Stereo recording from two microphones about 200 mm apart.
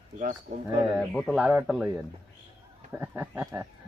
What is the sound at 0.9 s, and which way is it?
Speech, centre (ahead or behind).